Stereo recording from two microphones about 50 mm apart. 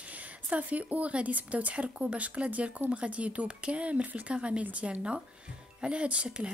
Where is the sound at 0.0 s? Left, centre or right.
Right.